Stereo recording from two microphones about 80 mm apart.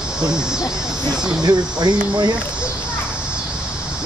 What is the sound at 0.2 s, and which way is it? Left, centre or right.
Speech, centre.